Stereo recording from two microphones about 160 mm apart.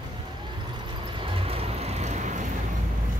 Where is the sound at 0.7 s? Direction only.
30° right (ahead or behind); by 2.4 s 50° right (ahead or behind).